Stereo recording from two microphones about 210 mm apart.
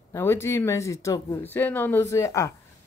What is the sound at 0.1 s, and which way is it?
Speech, 10° left (ahead or behind).